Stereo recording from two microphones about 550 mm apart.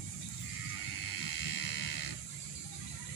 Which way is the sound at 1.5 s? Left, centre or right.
Left.